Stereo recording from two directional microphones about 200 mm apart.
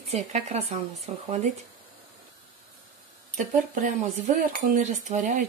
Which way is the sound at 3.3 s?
40° right (ahead or behind).